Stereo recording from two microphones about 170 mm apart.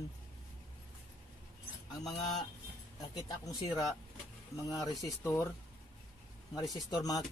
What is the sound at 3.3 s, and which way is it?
Speech, 20° left (ahead or behind).